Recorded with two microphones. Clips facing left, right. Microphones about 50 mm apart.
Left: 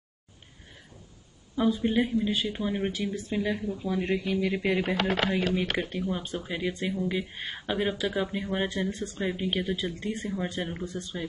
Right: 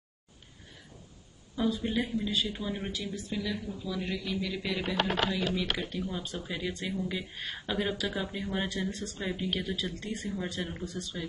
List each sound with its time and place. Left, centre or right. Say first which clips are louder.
1.6 s speech: left 5 dB; left
3.2 s speech: left 5 dB; left